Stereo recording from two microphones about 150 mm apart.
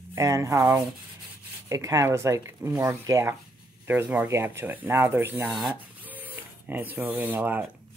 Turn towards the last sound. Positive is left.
turn(degrees=-10)  # may be behind; listen again after turning